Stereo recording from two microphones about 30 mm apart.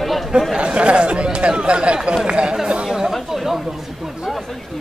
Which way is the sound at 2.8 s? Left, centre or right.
Centre.